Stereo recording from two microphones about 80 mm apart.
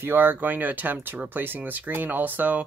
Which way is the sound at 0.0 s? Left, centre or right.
Right.